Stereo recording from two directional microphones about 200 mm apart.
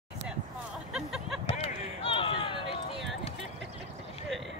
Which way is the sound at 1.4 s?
30° left (ahead or behind).